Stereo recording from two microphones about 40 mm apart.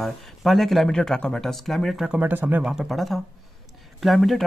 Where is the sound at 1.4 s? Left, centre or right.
Centre.